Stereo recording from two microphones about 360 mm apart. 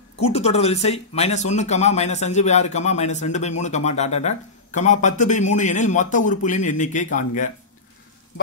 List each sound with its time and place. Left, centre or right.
0.2 s speech: centre